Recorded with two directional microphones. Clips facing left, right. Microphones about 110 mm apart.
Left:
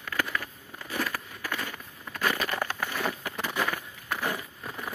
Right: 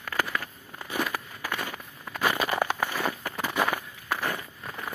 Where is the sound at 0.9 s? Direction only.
15° right (ahead or behind).